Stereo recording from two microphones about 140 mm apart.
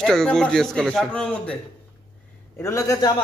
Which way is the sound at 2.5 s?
20° left (ahead or behind).